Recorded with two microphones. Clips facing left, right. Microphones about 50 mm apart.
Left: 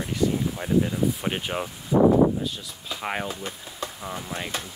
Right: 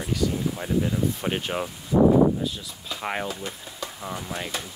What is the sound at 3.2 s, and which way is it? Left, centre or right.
Speech, left.